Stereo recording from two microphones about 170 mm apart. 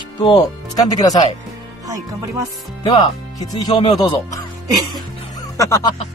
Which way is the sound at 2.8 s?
25° left (ahead or behind).